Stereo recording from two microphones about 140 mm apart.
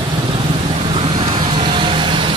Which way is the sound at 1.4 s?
35° right (ahead or behind).